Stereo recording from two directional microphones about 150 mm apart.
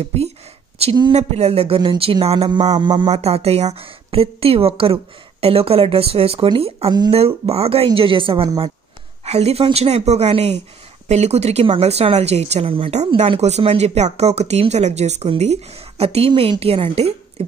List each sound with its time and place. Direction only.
0.0 s a woman's voice: 45° right (ahead or behind)
2.8 s a woman's voice: 30° right (ahead or behind)
3.1 s a woman's voice: 45° right (ahead or behind)